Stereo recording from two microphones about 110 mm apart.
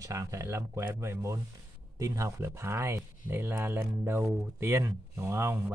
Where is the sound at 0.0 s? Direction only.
30° right (ahead or behind).